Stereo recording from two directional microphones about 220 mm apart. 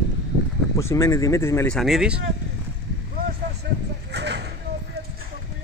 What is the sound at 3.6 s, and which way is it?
Vehicle, 50° right (ahead or behind).